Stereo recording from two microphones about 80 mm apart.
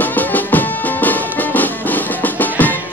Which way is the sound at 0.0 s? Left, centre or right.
Left.